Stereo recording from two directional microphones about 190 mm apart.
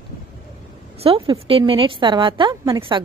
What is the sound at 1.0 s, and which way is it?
A woman's voice, 30° right (ahead or behind).